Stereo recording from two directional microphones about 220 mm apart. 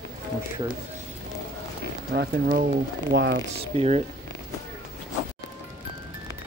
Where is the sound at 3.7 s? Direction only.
25° right (ahead or behind).